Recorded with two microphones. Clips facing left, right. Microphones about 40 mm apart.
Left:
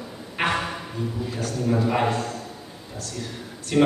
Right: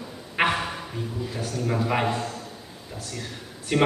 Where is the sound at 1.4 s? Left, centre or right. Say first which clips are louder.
Left 3 dB; centre.